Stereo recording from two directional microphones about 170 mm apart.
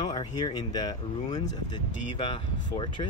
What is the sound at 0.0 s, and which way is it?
Speech, 25° left (ahead or behind).